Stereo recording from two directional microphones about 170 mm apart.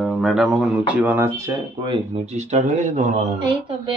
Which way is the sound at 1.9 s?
45° right (ahead or behind).